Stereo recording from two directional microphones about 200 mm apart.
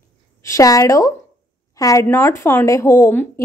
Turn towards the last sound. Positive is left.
turn(degrees=10)  # may be behind; listen again after turning